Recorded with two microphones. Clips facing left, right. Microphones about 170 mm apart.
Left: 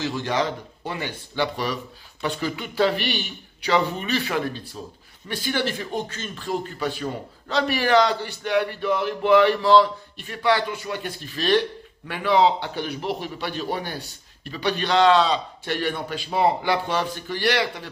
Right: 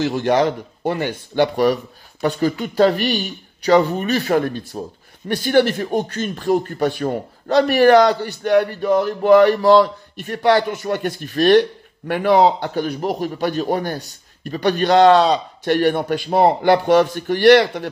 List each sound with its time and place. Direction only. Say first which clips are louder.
0.0 s speech: right 8 dB; 55° right (ahead or behind)